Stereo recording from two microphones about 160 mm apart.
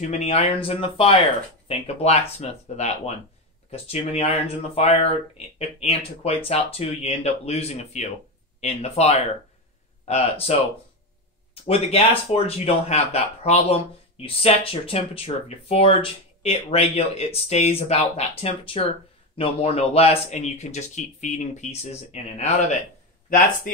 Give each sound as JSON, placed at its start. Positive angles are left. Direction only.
{"t": 0.1, "sound": "speech", "side_deg": 45}
{"t": 3.7, "sound": "speech", "side_deg": 40}
{"t": 11.6, "sound": "speech", "side_deg": 35}